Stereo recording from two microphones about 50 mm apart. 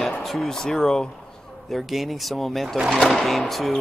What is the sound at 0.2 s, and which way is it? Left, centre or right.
Speech, centre.